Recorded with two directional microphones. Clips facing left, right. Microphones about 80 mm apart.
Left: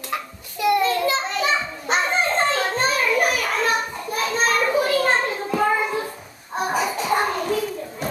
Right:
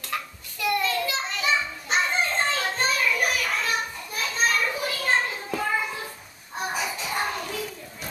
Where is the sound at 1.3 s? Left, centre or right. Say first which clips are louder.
Left 4 dB; left.